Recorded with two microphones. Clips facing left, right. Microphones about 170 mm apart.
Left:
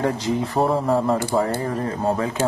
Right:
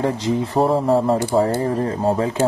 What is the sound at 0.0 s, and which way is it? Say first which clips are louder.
Speech: right 2 dB; 25° right (ahead or behind).